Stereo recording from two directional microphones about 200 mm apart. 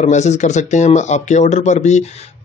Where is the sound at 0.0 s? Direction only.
35° left (ahead or behind).